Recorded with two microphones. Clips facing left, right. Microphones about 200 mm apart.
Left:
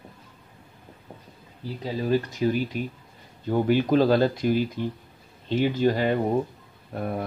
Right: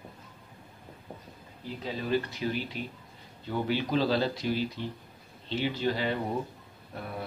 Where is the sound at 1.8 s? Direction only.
40° left (ahead or behind).